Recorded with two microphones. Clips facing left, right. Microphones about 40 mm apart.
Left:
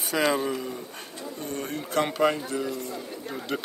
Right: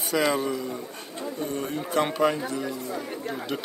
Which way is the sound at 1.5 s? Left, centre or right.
Centre.